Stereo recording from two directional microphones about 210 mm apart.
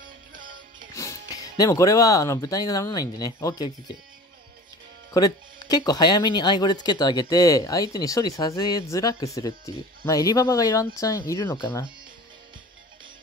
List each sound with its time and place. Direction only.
0.0 s music: 40° right (ahead or behind)
0.9 s speech: 15° left (ahead or behind)
5.1 s speech: 20° left (ahead or behind)